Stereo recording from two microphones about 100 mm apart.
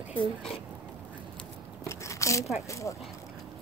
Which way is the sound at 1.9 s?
30° left (ahead or behind).